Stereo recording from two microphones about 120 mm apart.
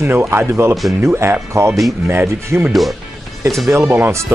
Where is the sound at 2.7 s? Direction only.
Centre (ahead or behind).